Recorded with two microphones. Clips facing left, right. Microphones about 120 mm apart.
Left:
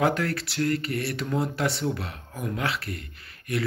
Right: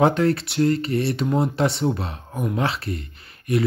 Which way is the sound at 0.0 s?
25° right (ahead or behind).